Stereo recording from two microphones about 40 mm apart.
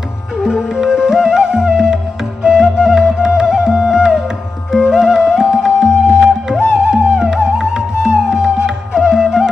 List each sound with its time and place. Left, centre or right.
0.4 s music: centre
2.4 s flute: centre
4.7 s music: centre